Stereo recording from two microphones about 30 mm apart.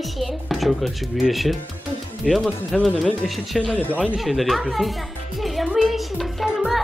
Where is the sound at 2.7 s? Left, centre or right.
Centre.